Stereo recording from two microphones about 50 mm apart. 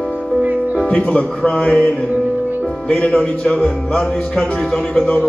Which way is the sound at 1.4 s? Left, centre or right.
Centre.